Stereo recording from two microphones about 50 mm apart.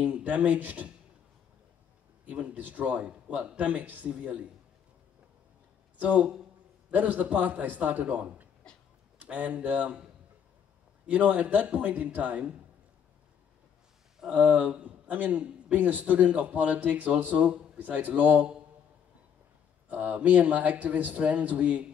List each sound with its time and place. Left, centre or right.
0.0 s speech: right
2.2 s speech: right
5.9 s a man's voice: right
11.1 s speech: right
14.4 s a man's voice: right
19.9 s speech: right